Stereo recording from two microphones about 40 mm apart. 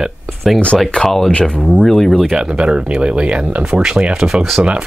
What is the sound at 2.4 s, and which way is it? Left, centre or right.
Speech, right.